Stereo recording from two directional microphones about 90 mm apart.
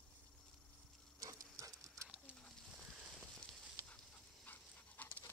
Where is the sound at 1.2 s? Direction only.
40° right (ahead or behind).